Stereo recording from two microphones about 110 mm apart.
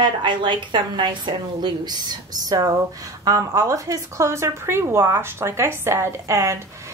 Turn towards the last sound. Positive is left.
turn(degrees=-25)  # may be behind; listen again after turning